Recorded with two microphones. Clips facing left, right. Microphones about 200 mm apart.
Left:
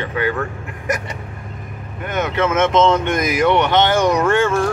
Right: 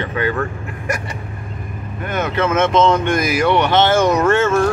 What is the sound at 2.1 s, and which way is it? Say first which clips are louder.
Speech: even; 15° left (ahead or behind).